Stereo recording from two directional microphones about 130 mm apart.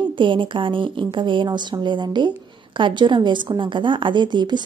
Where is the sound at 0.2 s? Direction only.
40° right (ahead or behind).